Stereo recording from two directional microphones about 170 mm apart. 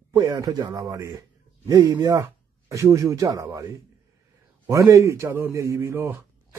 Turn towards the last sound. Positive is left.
turn(degrees=-15)  # may be behind; listen again after turning